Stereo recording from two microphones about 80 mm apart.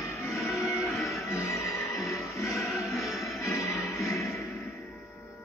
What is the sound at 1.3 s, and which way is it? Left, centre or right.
Music, left.